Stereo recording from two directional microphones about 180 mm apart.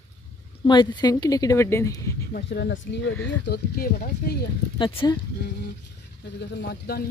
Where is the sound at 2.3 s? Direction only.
70° left (ahead or behind); by 3.2 s 85° left.